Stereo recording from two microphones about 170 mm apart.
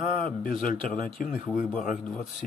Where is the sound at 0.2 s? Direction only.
55° left (ahead or behind).